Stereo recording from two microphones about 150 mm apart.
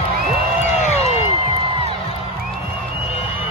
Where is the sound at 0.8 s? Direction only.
45° left (ahead or behind).